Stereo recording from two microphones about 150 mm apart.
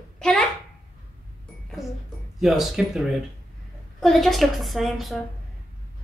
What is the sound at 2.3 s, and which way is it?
Speech, 5° right (ahead or behind).